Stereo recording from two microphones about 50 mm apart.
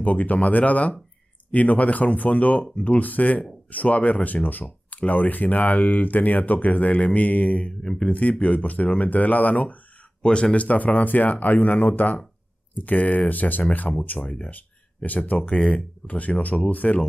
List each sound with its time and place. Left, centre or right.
0.0 s speech: left
10.2 s speech: left